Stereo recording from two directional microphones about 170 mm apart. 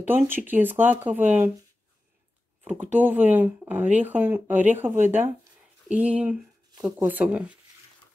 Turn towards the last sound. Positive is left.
turn(degrees=-10)  # may be behind; listen again after turning